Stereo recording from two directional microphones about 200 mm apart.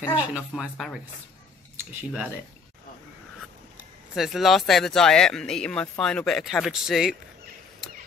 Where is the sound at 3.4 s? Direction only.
Centre (ahead or behind).